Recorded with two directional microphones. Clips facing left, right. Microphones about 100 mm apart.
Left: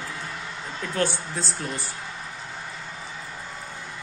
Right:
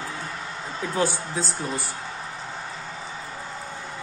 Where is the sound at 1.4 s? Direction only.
5° right (ahead or behind).